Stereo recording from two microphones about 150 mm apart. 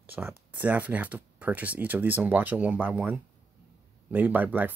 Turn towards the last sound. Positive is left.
turn(degrees=-10)  # may be behind; listen again after turning